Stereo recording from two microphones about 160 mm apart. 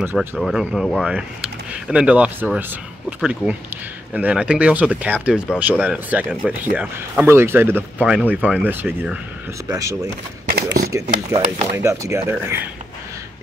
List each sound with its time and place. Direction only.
0.0 s speech: 10° right (ahead or behind)
9.7 s speech: 20° right (ahead or behind)
10.5 s speech: 80° right
11.7 s speech: 20° right (ahead or behind)